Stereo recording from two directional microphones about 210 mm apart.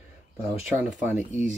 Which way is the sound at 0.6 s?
35° left (ahead or behind).